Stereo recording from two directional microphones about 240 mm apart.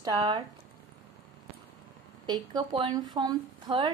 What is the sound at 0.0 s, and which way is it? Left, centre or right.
Speech, centre.